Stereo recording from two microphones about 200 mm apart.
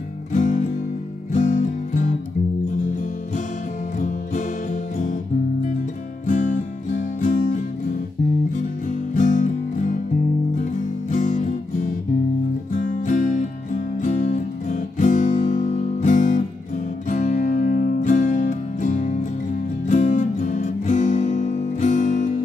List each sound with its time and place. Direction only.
0.3 s music: 40° left (ahead or behind)
4.0 s music: 40° left (ahead or behind)
6.2 s music: 40° left (ahead or behind)
9.1 s music: 40° left (ahead or behind)
12.7 s music: 40° left (ahead or behind)